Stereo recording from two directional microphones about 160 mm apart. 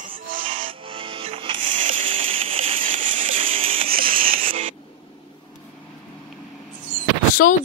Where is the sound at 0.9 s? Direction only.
35° right (ahead or behind).